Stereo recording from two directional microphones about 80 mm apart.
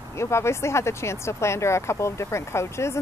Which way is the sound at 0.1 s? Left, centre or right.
Left.